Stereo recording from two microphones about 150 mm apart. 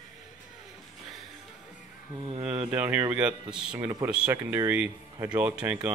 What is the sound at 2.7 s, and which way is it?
Speech, 15° right (ahead or behind).